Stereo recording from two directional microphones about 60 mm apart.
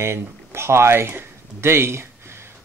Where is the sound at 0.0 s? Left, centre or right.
Right.